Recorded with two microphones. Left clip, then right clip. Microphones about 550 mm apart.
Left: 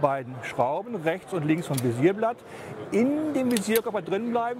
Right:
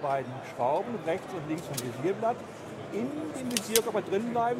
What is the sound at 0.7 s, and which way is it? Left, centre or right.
Speech, left.